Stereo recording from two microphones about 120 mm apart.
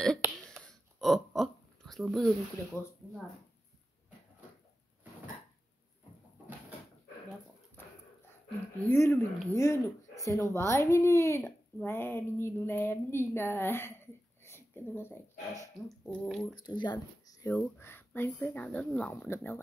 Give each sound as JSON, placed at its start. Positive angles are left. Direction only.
{"t": 0.4, "sound": "a sound", "side_deg": 5}
{"t": 7.8, "sound": "dog", "side_deg": 20}
{"t": 8.8, "sound": "speech", "side_deg": 20}
{"t": 16.1, "sound": "speech", "side_deg": 5}
{"t": 16.5, "sound": "speech", "side_deg": 40}
{"t": 17.5, "sound": "speech", "side_deg": 20}